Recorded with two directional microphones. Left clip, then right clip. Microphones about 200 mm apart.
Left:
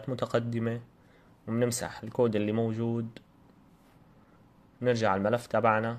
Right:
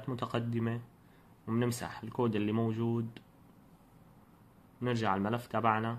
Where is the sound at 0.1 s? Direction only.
15° left (ahead or behind).